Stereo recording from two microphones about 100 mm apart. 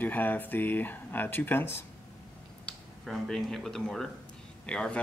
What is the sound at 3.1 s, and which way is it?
Speech, 5° left (ahead or behind).